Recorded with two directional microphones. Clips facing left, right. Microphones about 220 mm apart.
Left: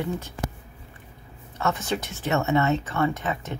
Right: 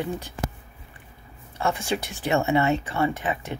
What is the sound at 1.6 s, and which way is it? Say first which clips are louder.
Speech: right 1 dB; 10° right (ahead or behind).